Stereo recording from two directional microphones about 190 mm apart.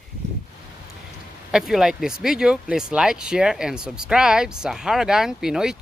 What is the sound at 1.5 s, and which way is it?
Speech, centre (ahead or behind).